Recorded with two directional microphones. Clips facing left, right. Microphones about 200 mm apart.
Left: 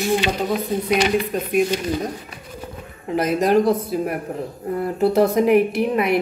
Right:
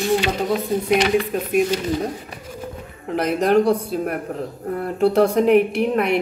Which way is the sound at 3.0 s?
Centre (ahead or behind).